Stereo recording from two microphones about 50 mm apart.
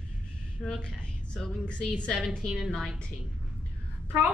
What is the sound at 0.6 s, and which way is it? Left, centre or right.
Speech, centre.